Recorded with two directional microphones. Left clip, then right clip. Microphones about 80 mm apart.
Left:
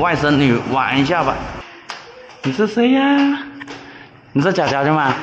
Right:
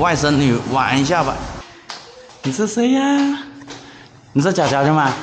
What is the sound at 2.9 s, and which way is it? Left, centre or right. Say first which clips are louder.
Speech: left 2 dB; centre.